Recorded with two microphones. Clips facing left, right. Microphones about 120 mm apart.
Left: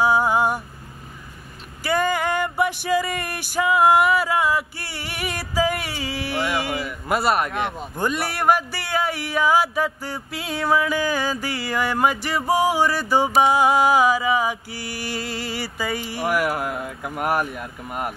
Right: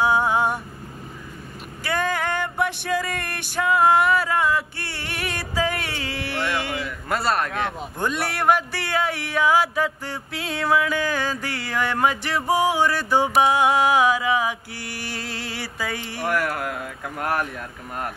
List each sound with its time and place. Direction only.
0.0 s vehicle: centre (ahead or behind)
1.8 s a sound: 5° left (ahead or behind)
16.5 s speech: 10° left (ahead or behind)